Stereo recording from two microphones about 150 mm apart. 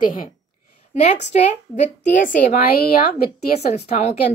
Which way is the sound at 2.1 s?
60° left (ahead or behind).